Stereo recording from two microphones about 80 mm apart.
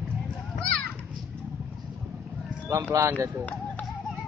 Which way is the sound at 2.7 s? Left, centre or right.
Right.